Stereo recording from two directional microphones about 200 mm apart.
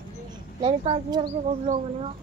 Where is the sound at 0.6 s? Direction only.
30° right (ahead or behind).